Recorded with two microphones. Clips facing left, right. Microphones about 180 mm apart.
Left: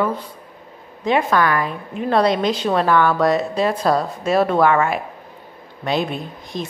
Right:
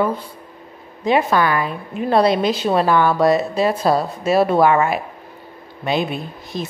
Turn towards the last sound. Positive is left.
turn(degrees=-5)  # may be behind; listen again after turning